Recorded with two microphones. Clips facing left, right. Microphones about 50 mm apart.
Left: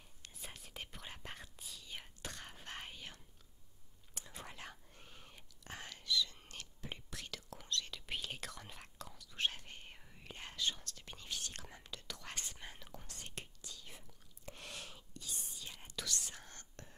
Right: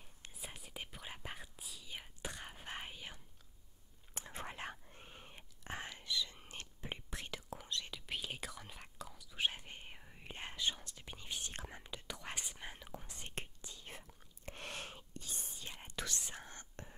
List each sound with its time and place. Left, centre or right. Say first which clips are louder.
0.4 s whispering: right 1 dB; centre
4.1 s whispering: right 5 dB; right
13.8 s whispering: right 4 dB; right; by 16.9 s centre